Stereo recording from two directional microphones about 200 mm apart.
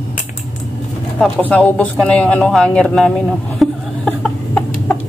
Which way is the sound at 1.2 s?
5° left (ahead or behind).